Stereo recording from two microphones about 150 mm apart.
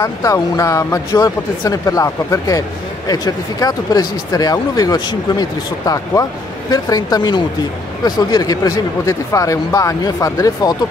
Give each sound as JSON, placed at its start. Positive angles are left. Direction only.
{"t": 0.0, "sound": "speech", "side_deg": 20}